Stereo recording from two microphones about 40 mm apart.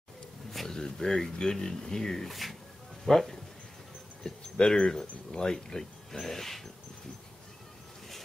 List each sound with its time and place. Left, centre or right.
0.7 s speech: centre
4.2 s speech: centre